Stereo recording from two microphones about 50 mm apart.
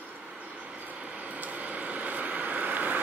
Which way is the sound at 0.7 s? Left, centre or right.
Right.